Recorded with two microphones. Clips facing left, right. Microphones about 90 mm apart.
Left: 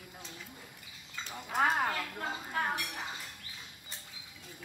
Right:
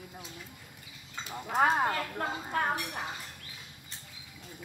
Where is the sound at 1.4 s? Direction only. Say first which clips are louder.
Right 3 dB; 30° right (ahead or behind).